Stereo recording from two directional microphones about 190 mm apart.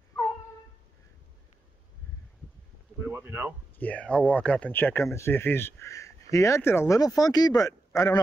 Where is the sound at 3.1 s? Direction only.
10° right (ahead or behind).